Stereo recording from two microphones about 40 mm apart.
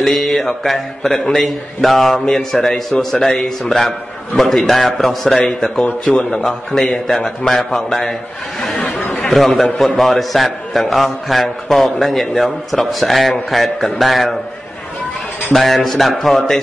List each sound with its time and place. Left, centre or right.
0.0 s a man's voice: centre
7.2 s a man's voice: centre
15.5 s a man's voice: centre